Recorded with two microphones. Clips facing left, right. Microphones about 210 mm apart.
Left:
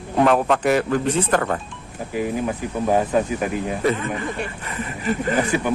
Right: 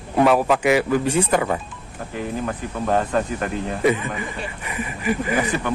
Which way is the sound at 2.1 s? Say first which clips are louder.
Left 3 dB; 10° left (ahead or behind).